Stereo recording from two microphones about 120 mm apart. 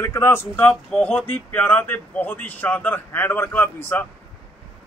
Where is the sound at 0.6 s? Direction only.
10° left (ahead or behind).